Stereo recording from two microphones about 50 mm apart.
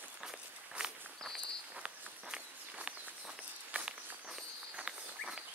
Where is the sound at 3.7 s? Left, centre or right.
Right.